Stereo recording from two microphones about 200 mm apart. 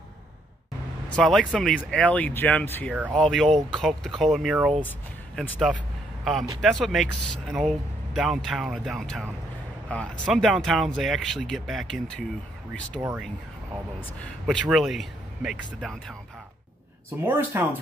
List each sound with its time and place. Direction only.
1.1 s speech: centre (ahead or behind)
4.7 s speech: 10° left (ahead or behind)
14.2 s speech: centre (ahead or behind)
17.3 s speech: 15° right (ahead or behind)